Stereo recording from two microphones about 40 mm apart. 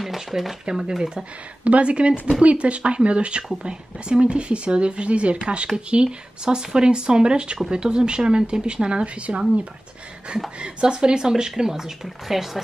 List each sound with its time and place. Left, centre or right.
0.0 s speech: centre
0.7 s speech: centre
1.6 s speech: right
10.6 s speech: right